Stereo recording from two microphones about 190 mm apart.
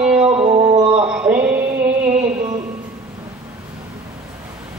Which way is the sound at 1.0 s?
5° right (ahead or behind).